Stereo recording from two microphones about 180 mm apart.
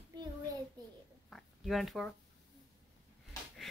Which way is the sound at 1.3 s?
Centre (ahead or behind).